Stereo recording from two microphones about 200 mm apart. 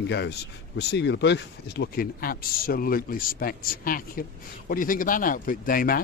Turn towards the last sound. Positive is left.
turn(degrees=45)  # may be behind; listen again after turning